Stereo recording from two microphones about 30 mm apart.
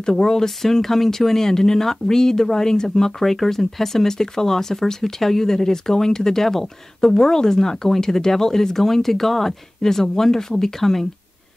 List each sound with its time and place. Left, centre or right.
0.0 s speech: left